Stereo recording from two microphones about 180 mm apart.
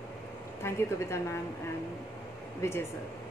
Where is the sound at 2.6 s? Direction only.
15° left (ahead or behind).